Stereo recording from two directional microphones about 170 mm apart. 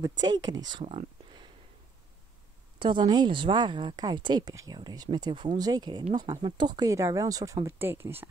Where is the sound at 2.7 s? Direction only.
25° right (ahead or behind).